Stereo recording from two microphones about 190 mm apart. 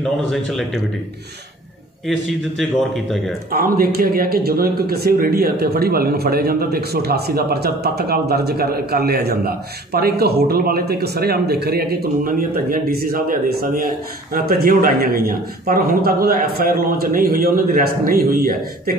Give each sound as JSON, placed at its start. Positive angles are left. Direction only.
{"t": 0.3, "sound": "a man's voice", "side_deg": 0}
{"t": 2.0, "sound": "a man's voice", "side_deg": 0}
{"t": 3.5, "sound": "a man's voice", "side_deg": -50}